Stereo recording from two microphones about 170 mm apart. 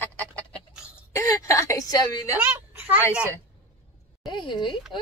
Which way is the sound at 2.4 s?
10° right (ahead or behind).